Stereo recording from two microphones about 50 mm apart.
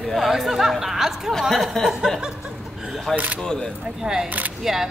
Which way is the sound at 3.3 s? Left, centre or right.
Centre.